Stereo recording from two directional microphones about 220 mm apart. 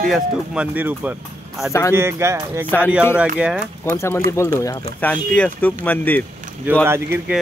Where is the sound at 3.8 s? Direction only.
10° left (ahead or behind).